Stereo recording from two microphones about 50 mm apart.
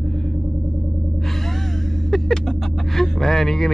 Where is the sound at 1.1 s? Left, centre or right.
Centre.